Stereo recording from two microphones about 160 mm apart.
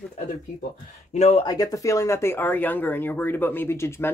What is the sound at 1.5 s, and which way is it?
Speech, 20° left (ahead or behind).